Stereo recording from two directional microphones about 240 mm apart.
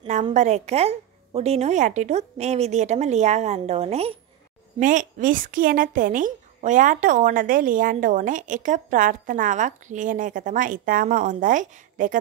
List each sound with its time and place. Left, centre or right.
0.0 s a woman's voice: right